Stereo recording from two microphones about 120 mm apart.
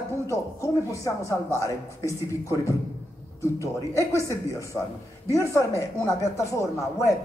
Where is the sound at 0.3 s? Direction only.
25° left (ahead or behind).